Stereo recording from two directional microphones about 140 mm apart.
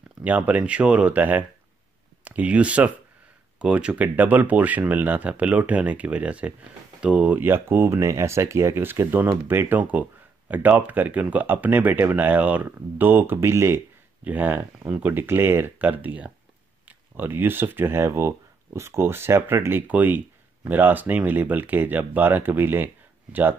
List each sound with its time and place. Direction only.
0.2 s speech: 10° right (ahead or behind)